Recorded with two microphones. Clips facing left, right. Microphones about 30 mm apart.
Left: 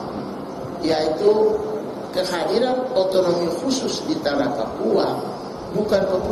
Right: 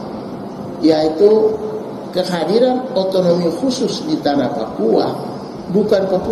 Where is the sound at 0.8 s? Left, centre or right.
Centre.